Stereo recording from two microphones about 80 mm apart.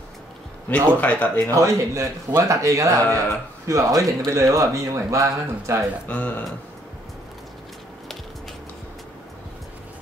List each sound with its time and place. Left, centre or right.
0.7 s speech: left
1.5 s speech: right
6.0 s speech: centre